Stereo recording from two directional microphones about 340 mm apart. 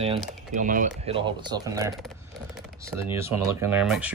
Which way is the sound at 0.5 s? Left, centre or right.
Right.